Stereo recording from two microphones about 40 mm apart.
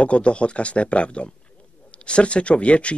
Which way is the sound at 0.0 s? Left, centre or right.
Left.